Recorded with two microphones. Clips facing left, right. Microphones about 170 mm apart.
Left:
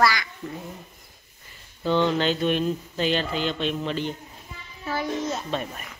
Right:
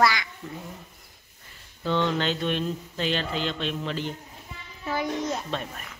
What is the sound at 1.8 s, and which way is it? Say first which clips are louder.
Speech: left 3 dB; centre (ahead or behind).